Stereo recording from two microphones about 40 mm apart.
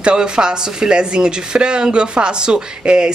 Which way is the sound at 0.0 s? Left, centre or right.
Right.